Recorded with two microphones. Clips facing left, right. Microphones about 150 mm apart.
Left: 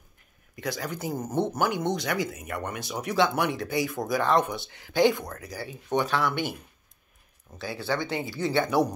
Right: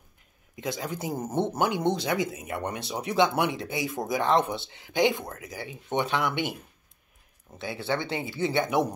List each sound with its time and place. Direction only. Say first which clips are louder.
0.6 s speech: even; 20° right (ahead or behind)
7.5 s speech: even; 25° right (ahead or behind)